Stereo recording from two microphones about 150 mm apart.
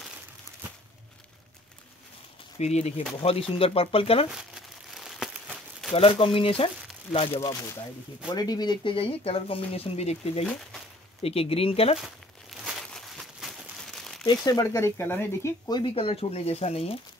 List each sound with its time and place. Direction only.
2.6 s speech: 45° left (ahead or behind)
4.3 s crumpling: 5° right (ahead or behind)
5.9 s speech: 40° left (ahead or behind)
7.3 s speech: 20° left (ahead or behind); by 10.4 s 45° left (ahead or behind)
10.4 s speech: 5° left (ahead or behind)
11.2 s speech: 40° left (ahead or behind)
12.6 s crumpling: centre (ahead or behind)
14.2 s speech: 25° left (ahead or behind)
15.7 s speech: 35° left (ahead or behind)